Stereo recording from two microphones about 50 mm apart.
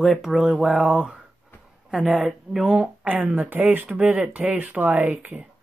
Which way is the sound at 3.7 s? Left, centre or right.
Right.